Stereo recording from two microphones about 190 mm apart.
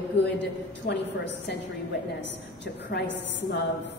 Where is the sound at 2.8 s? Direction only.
65° left (ahead or behind).